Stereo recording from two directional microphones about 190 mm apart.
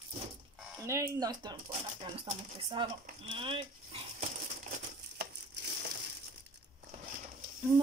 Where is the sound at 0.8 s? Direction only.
15° right (ahead or behind).